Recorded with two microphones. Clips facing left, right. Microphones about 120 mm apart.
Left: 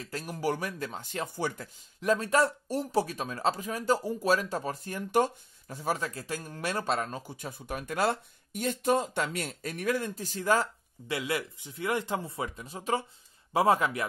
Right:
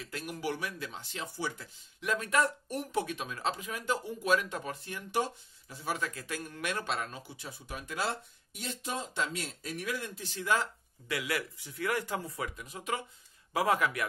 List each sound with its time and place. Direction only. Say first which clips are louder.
0.0 s speech: left 4 dB; 35° left (ahead or behind); by 1.7 s 55° left (ahead or behind)
2.0 s speech: left 5 dB; 35° left (ahead or behind)
11.1 s speech: left 3 dB; 25° left (ahead or behind)